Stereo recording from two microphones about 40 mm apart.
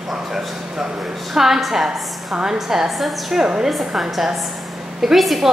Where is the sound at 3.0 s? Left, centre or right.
Centre.